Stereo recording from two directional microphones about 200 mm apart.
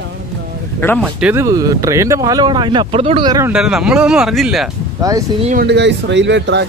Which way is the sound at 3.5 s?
5° right (ahead or behind).